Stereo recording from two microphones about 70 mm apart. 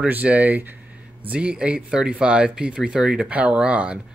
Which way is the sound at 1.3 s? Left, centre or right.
Centre.